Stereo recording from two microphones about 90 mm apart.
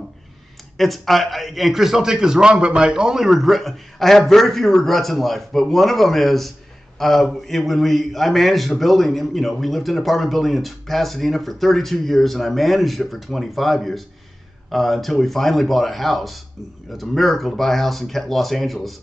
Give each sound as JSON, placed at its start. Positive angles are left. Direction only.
{"t": 0.7, "sound": "a man's voice", "side_deg": 0}